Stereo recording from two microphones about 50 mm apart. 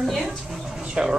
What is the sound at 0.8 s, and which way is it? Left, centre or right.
Speech, centre.